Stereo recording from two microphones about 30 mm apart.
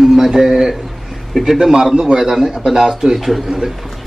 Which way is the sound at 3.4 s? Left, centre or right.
Centre.